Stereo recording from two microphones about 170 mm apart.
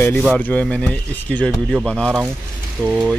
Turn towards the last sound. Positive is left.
turn(degrees=0)  # may be behind; listen again after turning